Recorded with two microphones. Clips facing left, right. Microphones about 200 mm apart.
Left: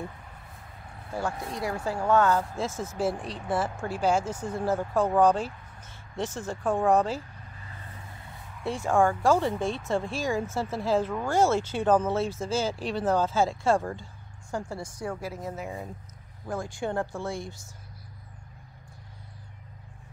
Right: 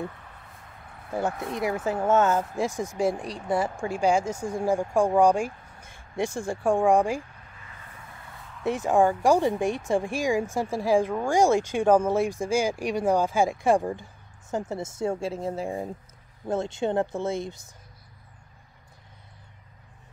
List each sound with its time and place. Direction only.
1.4 s speech: 20° right (ahead or behind)
2.9 s speech: 5° left (ahead or behind)
4.3 s speech: 10° right (ahead or behind)
8.6 s speech: 20° right (ahead or behind)